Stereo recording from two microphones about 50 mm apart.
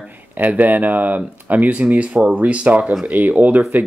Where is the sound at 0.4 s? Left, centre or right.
Right.